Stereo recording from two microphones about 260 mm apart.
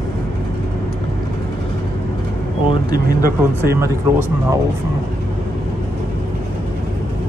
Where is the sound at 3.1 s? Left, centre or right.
Right.